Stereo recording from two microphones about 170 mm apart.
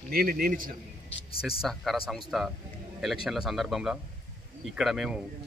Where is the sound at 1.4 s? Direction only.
5° right (ahead or behind).